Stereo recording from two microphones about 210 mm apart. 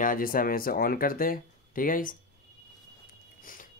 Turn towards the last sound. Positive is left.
turn(degrees=40)  # may be behind; listen again after turning